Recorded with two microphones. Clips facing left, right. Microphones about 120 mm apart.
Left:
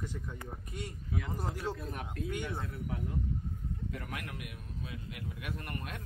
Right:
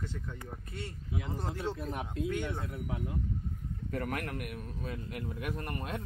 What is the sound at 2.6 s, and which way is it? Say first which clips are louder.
Speech: right 1 dB; 15° right (ahead or behind).